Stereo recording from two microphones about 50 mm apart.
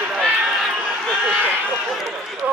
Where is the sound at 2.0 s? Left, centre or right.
Centre.